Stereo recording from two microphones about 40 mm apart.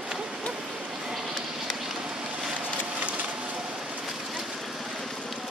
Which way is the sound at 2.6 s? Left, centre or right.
Right.